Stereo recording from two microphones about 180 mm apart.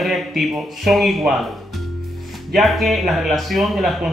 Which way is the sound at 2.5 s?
Centre (ahead or behind).